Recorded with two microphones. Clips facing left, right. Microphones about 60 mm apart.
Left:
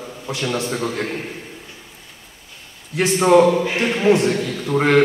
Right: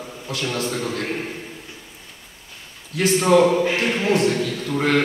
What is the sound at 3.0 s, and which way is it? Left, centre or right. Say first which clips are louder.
A man's voice: left 2 dB; left.